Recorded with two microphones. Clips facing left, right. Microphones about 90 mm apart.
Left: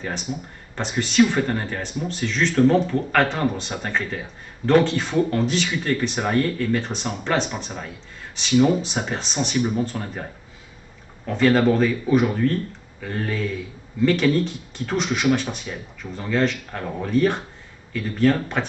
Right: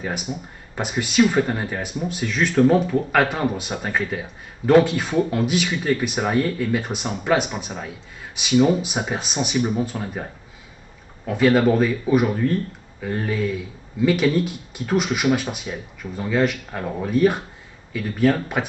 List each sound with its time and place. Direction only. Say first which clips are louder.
0.0 s speech: right 1 dB; 10° right (ahead or behind)
11.2 s speech: right 1 dB; 5° right (ahead or behind)